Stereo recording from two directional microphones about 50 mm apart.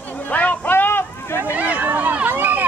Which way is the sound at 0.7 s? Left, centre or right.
Left.